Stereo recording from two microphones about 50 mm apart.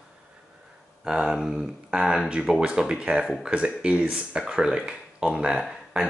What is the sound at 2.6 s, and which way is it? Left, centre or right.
Speech, centre.